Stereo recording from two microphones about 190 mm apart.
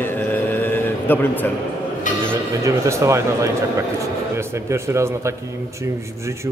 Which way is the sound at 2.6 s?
15° right (ahead or behind).